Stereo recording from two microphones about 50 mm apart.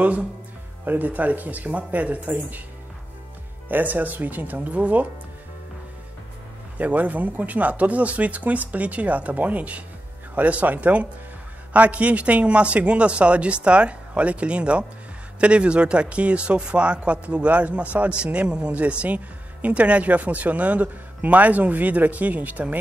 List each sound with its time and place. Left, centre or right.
0.0 s a man's voice: right
3.6 s speech: right
6.8 s a man's voice: right